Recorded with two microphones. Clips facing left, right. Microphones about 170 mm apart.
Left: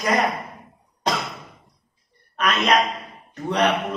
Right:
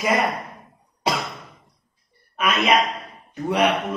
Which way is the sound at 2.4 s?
5° right (ahead or behind).